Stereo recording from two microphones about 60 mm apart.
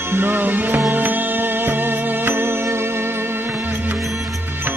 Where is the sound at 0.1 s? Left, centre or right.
Right.